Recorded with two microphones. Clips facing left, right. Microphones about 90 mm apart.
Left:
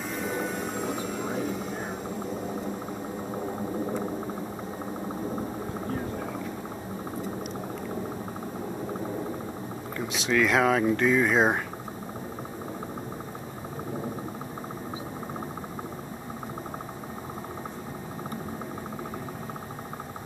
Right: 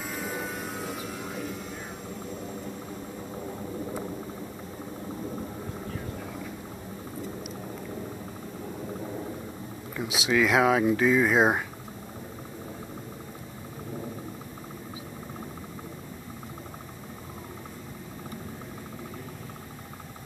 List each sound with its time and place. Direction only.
0.1 s vehicle: centre (ahead or behind)
5.9 s vehicle: 40° left (ahead or behind)
9.9 s speech: 5° right (ahead or behind)